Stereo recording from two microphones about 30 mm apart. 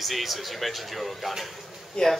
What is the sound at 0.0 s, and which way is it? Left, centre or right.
Speech, centre.